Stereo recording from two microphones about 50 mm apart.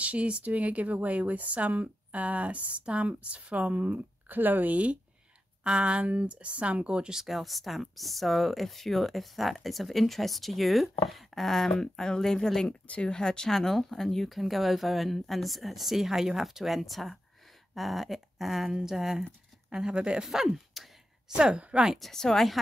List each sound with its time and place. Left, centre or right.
0.0 s speech: right
7.2 s speech: centre
20.4 s a sound: centre
21.4 s speech: centre
21.9 s speech: centre